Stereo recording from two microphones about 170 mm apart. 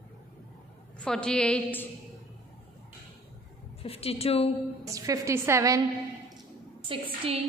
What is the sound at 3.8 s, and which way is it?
Speech, 35° left (ahead or behind).